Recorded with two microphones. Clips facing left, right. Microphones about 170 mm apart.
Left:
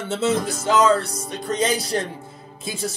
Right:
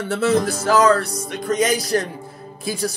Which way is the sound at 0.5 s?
20° left (ahead or behind).